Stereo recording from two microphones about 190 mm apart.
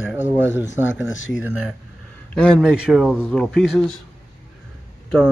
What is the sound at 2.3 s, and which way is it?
Speech, 5° left (ahead or behind).